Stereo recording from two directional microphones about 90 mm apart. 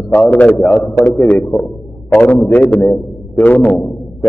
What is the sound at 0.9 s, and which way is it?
Speech, 5° left (ahead or behind).